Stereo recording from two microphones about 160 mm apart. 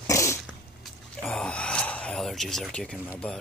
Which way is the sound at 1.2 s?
5° left (ahead or behind).